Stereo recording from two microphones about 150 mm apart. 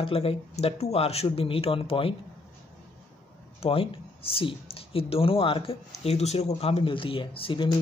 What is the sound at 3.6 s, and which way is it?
Speech, 40° left (ahead or behind).